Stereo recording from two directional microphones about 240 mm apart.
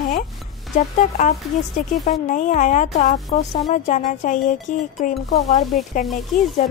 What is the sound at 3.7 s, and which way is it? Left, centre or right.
Speech, left.